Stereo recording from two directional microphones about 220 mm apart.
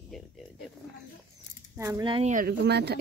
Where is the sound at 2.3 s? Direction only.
40° right (ahead or behind).